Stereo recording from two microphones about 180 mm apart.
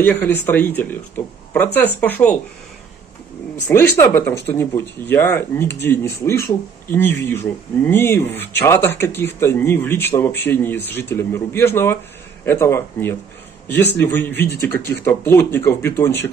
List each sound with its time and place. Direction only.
0.0 s speech: 10° left (ahead or behind)
3.6 s speech: 15° left (ahead or behind)